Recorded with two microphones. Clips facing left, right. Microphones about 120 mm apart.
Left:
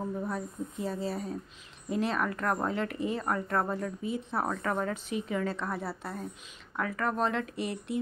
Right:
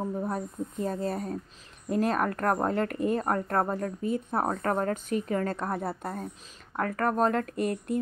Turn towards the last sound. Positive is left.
turn(degrees=-50)  # may be behind; listen again after turning